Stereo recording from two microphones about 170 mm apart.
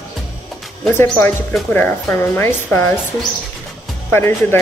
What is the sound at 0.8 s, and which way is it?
A woman's voice, 10° left (ahead or behind).